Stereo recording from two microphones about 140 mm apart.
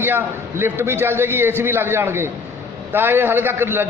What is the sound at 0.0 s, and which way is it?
A man's voice, 15° right (ahead or behind).